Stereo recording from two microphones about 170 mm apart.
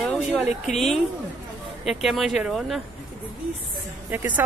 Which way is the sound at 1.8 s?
Centre (ahead or behind).